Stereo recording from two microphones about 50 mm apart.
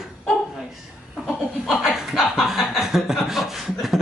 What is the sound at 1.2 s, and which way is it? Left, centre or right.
Chuckle, centre.